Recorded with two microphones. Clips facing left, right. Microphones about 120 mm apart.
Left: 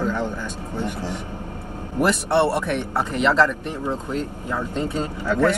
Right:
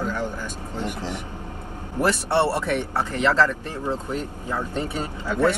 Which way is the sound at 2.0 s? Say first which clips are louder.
Left 2 dB; 20° left (ahead or behind).